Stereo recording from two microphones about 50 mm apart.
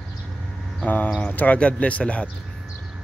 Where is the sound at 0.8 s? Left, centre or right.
Left.